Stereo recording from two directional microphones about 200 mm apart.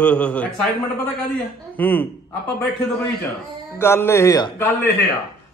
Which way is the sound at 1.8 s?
10° left (ahead or behind).